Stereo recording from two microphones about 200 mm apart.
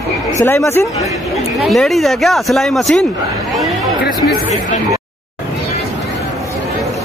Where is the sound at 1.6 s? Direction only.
Centre (ahead or behind).